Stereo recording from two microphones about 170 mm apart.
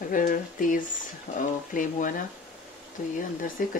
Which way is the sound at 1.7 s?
50° left (ahead or behind).